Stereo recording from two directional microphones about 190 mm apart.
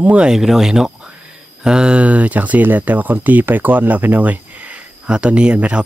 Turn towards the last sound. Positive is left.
turn(degrees=-5)  # may be behind; listen again after turning